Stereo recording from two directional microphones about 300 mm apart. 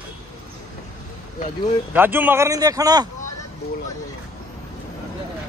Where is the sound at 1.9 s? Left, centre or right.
Centre.